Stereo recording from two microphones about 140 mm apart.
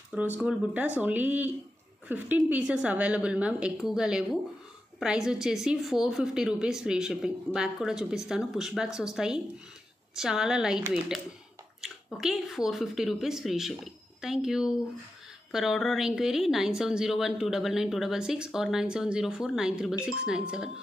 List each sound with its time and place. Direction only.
0.1 s a woman's voice: 10° right (ahead or behind)